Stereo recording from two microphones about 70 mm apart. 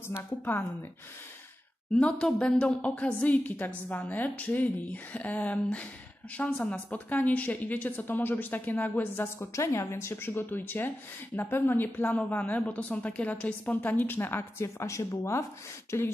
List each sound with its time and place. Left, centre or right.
2.0 s a woman's voice: centre; by 16.1 s left